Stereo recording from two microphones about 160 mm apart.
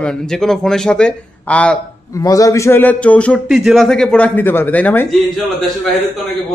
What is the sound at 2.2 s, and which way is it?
Speech, 20° left (ahead or behind).